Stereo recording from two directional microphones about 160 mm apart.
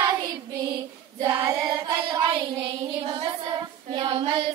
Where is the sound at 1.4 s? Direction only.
20° right (ahead or behind).